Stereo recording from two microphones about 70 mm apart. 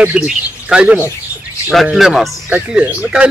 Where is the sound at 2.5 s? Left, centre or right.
Centre.